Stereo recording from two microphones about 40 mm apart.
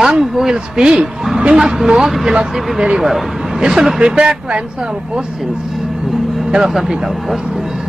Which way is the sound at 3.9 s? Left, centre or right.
Right.